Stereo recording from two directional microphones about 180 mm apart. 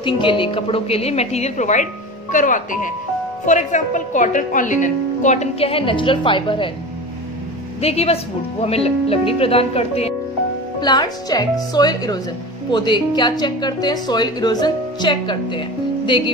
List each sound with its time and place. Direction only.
0.0 s a woman's voice: 30° left (ahead or behind)
7.8 s a woman's voice: 35° left (ahead or behind)
10.8 s speech: 25° left (ahead or behind)